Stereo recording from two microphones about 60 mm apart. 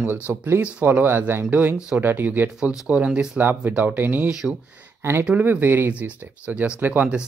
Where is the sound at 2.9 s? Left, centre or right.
Centre.